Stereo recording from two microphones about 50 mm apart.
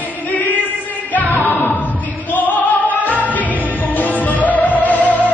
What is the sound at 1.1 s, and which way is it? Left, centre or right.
Music, left.